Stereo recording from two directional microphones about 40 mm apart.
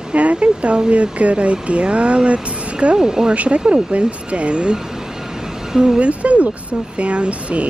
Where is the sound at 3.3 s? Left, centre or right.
Right.